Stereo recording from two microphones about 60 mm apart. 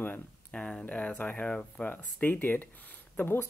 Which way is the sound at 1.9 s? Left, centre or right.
Left.